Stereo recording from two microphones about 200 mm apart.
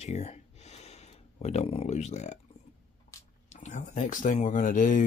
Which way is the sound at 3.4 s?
35° left (ahead or behind).